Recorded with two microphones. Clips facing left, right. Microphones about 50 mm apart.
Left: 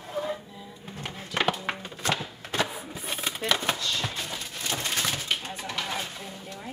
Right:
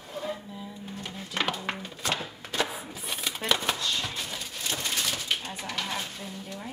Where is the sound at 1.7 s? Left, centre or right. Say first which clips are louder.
Left 2 dB; left.